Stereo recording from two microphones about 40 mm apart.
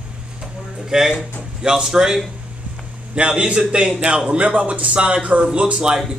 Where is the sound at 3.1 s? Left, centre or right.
Right.